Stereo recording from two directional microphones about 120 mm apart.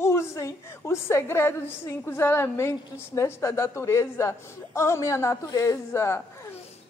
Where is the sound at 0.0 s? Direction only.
20° left (ahead or behind).